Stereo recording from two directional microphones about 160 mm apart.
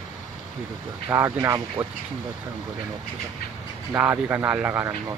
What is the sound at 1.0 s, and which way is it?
Speech, 15° right (ahead or behind).